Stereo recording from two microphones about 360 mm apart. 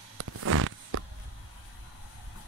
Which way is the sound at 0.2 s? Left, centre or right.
Right.